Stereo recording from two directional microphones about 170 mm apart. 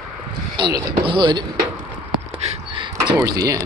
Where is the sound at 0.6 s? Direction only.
25° right (ahead or behind).